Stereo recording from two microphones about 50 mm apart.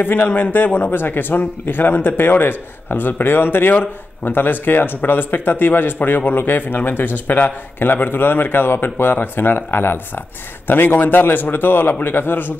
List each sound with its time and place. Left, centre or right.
0.0 s a man's voice: left